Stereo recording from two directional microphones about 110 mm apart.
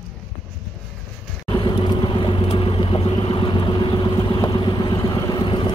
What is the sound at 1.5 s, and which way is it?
Vehicle, 45° left (ahead or behind).